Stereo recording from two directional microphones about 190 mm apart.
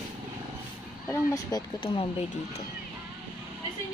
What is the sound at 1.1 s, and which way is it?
Speech, 20° left (ahead or behind).